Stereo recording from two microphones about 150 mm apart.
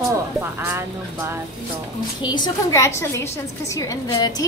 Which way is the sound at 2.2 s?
30° left (ahead or behind).